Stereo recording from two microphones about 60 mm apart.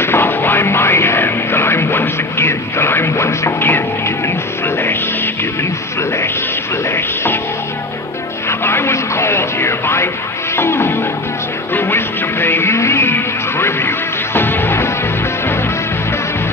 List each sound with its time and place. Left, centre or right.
0.0 s music: left
8.5 s radio: left
10.5 s music: left